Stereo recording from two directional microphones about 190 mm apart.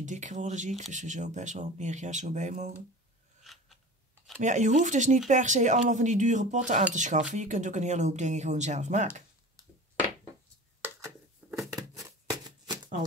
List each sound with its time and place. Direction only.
0.0 s speech: 40° right (ahead or behind)
4.4 s speech: 40° right (ahead or behind)
10.8 s a sound: 15° right (ahead or behind)
11.7 s shuffling cards: 20° right (ahead or behind)